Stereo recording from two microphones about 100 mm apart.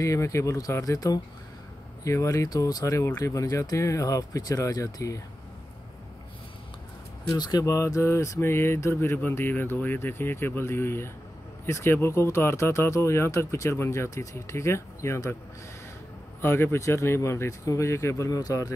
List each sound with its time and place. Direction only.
0.0 s speech: 30° left (ahead or behind)
7.3 s speech: 40° left (ahead or behind)
16.3 s speech: 25° left (ahead or behind)